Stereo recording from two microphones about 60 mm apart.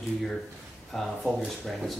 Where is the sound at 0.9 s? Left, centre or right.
Centre.